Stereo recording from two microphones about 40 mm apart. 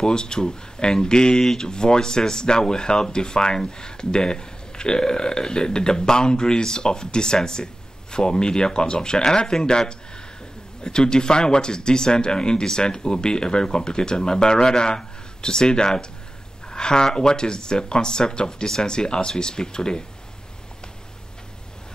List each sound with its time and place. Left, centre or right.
0.0 s speech: centre